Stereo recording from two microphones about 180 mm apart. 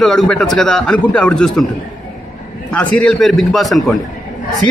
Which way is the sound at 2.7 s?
5° left (ahead or behind).